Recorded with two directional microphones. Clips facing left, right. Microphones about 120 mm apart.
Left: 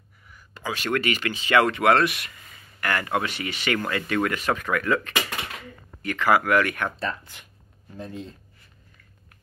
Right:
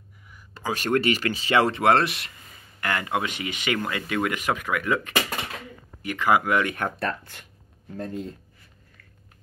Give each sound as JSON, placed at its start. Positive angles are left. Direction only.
{"t": 0.6, "sound": "a sound", "side_deg": -40}
{"t": 0.9, "sound": "speech", "side_deg": -35}
{"t": 7.0, "sound": "speech", "side_deg": -60}
{"t": 8.0, "sound": "speech", "side_deg": -45}